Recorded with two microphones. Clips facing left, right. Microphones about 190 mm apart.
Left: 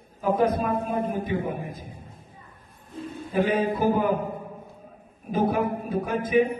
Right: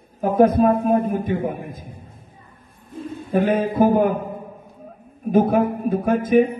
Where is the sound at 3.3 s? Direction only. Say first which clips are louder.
Right 4 dB; 50° right (ahead or behind).